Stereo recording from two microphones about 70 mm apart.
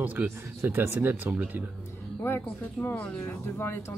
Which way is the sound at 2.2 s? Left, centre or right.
Left.